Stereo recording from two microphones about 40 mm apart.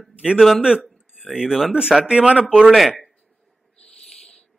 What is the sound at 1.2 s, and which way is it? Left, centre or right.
Speech, centre.